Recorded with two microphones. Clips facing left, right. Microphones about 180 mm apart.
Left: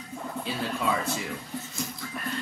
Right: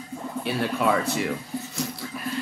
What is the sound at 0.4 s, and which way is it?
Speech, 70° right (ahead or behind).